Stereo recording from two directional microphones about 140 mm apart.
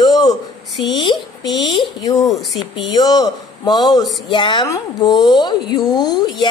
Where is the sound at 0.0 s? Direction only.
30° left (ahead or behind).